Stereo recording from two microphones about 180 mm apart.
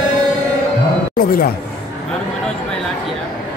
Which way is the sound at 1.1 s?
55° left (ahead or behind).